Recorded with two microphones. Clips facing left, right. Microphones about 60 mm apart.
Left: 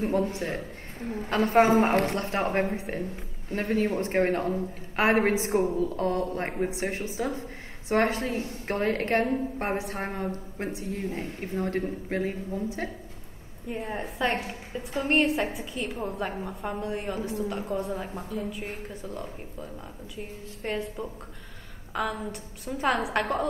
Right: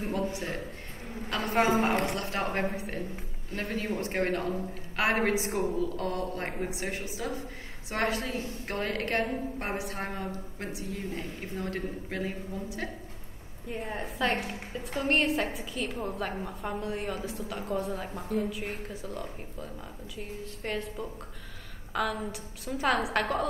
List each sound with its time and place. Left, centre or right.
0.3 s a woman's voice: left
3.6 s a woman's voice: left
4.0 s a woman's voice: left
8.3 s a woman's voice: left
8.6 s a woman's voice: left
13.7 s a woman's voice: centre